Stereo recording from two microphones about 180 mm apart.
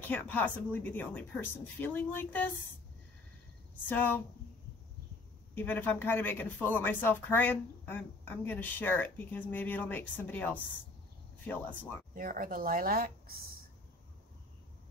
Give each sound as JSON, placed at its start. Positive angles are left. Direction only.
{"t": 0.0, "sound": "speech", "side_deg": 10}
{"t": 3.9, "sound": "speech", "side_deg": 10}
{"t": 5.5, "sound": "speech", "side_deg": 10}
{"t": 12.2, "sound": "speech", "side_deg": -50}